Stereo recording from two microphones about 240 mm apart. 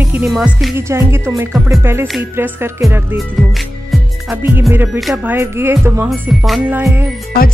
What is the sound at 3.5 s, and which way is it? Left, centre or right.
Speech, centre.